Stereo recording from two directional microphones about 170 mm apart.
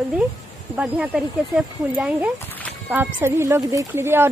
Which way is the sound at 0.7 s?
5° right (ahead or behind).